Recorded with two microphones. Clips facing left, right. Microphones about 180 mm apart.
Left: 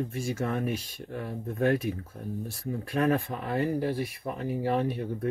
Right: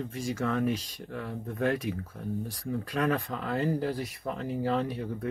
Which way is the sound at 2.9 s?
25° left (ahead or behind).